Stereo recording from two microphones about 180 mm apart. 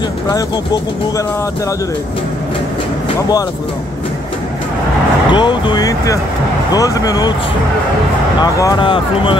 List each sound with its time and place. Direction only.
3.2 s speech: 20° left (ahead or behind)
5.3 s speech: 25° left (ahead or behind)
8.4 s speech: 20° left (ahead or behind)